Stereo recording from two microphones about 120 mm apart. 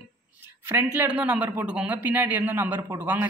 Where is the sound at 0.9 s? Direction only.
10° right (ahead or behind).